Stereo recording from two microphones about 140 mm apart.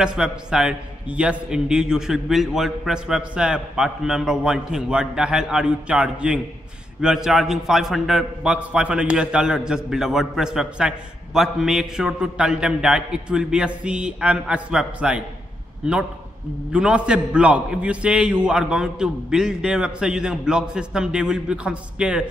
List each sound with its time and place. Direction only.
0.0 s a man's voice: 5° right (ahead or behind)